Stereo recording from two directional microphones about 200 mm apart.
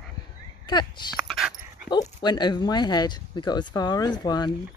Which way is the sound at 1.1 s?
Centre (ahead or behind).